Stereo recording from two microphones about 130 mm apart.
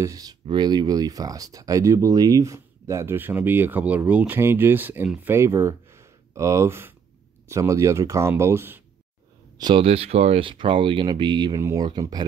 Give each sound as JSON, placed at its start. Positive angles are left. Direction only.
{"t": 0.0, "sound": "speech", "side_deg": -30}
{"t": 9.6, "sound": "speech", "side_deg": -35}
{"t": 9.8, "sound": "speech", "side_deg": -50}
{"t": 11.5, "sound": "speech", "side_deg": -25}